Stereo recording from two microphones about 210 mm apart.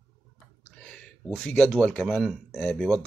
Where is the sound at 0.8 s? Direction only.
5° left (ahead or behind).